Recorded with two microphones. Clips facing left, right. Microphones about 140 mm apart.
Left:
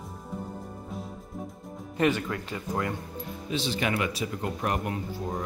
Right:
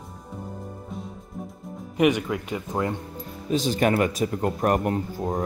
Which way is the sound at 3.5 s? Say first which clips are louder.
Right 7 dB; 45° right (ahead or behind).